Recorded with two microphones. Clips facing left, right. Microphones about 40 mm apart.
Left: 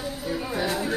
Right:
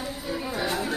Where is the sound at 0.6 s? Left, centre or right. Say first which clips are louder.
Left 1 dB; centre.